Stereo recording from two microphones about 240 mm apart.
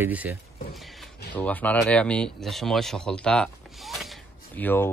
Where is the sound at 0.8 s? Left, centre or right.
Centre.